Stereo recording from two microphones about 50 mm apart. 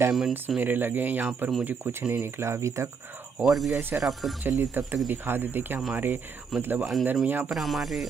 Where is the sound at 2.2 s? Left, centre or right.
Right.